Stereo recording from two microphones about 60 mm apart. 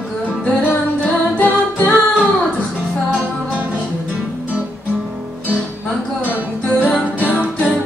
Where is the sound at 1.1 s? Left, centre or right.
Left.